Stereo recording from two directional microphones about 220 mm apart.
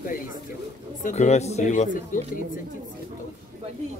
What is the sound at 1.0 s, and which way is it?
Speech, 30° left (ahead or behind).